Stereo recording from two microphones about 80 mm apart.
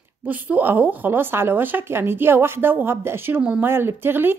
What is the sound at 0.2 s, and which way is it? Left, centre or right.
Speech, right.